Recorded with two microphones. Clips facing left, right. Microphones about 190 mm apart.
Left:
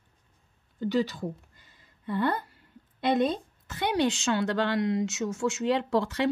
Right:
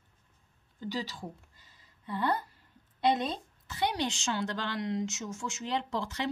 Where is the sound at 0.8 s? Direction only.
60° left (ahead or behind).